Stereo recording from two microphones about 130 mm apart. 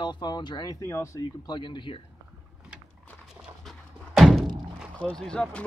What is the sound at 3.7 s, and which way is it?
Thunk, centre (ahead or behind).